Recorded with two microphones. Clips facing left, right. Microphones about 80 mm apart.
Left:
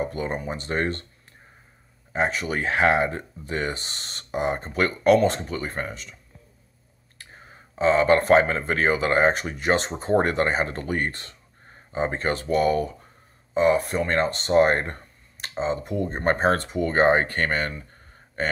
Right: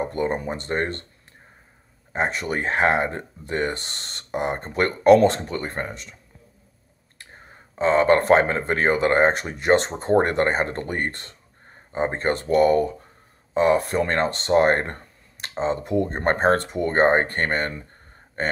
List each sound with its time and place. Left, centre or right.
0.0 s a sound: right
0.4 s speech: right
0.7 s speech: right
2.1 s speech: right
7.8 s speech: right
10.1 s speech: right